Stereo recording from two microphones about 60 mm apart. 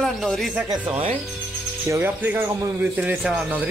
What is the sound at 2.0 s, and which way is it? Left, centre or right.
Speech, right.